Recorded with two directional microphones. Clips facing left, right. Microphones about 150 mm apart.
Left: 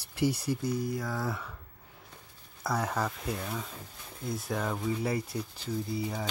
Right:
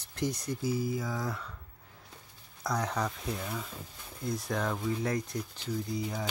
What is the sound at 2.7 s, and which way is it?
Speech, 5° left (ahead or behind).